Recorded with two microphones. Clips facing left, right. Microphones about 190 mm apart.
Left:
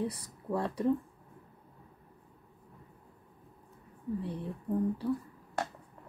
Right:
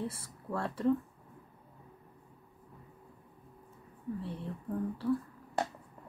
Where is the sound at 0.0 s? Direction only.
15° left (ahead or behind).